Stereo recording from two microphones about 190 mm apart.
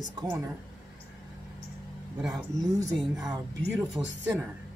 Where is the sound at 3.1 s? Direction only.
20° right (ahead or behind).